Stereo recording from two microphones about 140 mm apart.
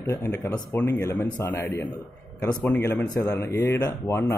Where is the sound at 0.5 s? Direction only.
15° left (ahead or behind).